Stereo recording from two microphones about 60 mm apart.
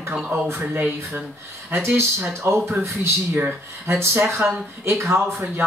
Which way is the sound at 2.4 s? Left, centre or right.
Right.